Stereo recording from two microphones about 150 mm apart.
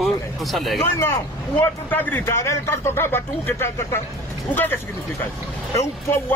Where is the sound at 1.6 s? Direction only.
10° left (ahead or behind).